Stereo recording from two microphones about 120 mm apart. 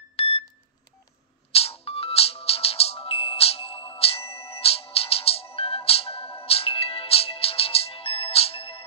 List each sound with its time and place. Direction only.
0.1 s beep: 55° left (ahead or behind)
1.5 s ringtone: 55° left (ahead or behind)
4.0 s music: 55° left (ahead or behind)